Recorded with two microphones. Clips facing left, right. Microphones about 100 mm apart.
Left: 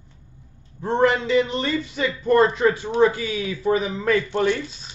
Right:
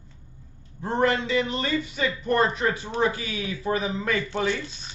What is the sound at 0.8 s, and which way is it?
Speech, 25° left (ahead or behind).